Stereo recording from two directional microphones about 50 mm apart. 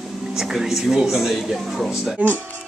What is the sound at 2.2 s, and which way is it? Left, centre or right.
Speech, right.